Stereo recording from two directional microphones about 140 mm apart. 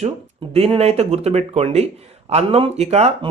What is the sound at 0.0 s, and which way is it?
Speech, 50° right (ahead or behind).